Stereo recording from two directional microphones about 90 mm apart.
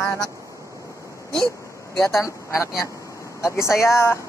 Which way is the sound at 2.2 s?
35° left (ahead or behind).